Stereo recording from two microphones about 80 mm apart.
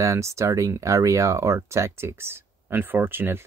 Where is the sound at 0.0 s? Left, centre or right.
Right.